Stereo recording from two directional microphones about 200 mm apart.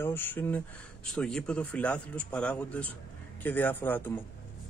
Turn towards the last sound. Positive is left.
turn(degrees=10)  # may be behind; listen again after turning